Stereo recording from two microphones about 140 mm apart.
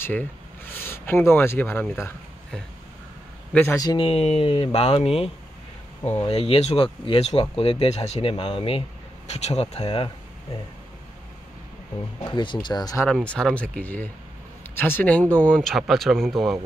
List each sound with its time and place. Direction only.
0.0 s speech: 15° left (ahead or behind)
3.7 s speech: 30° left (ahead or behind)
4.1 s speech: 45° left (ahead or behind)
12.3 s speech: 35° left (ahead or behind)
13.1 s speech: 5° left (ahead or behind)